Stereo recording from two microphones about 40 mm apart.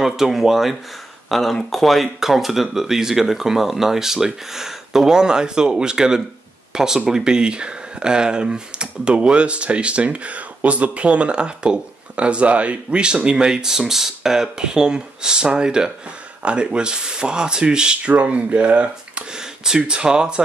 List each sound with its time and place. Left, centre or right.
0.0 s speech: centre
1.3 s speech: centre; by 18.1 s right
18.3 s speech: right
19.3 s speech: centre